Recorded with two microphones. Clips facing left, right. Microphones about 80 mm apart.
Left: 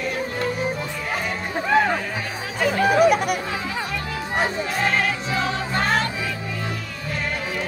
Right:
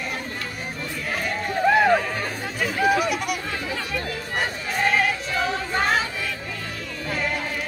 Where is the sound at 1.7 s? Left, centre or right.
Centre.